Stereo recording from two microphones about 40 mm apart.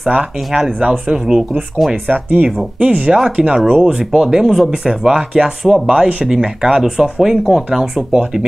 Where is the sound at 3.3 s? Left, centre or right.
Right.